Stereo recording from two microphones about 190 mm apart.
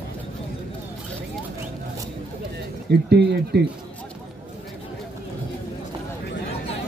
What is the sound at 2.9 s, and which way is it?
Speech, 60° right (ahead or behind).